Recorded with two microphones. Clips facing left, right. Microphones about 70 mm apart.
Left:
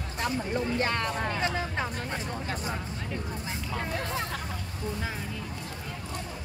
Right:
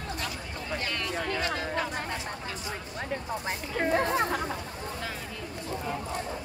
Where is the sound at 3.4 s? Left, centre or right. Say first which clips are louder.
Right 4 dB; right.